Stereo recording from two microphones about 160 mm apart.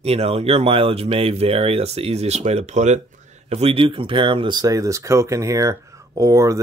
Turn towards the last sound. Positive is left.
turn(degrees=-20)  # may be behind; listen again after turning